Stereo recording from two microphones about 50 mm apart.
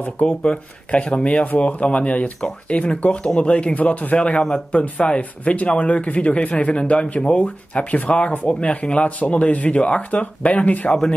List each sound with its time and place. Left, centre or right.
0.4 s speech: left
10.9 s speech: centre